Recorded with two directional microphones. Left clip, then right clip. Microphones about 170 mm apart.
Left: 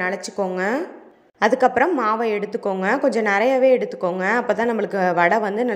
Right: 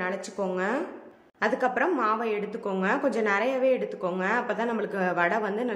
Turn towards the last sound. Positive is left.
turn(degrees=30)  # may be behind; listen again after turning